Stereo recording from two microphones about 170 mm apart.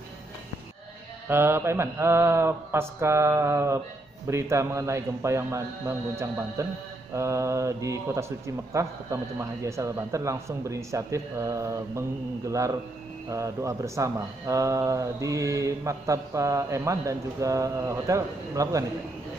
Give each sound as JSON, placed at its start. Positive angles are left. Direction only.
{"t": 1.3, "sound": "speech", "side_deg": -15}